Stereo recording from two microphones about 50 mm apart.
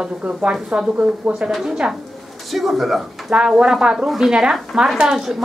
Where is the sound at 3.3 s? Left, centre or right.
Centre.